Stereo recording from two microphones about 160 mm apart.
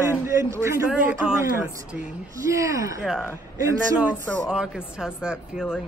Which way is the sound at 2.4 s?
20° right (ahead or behind).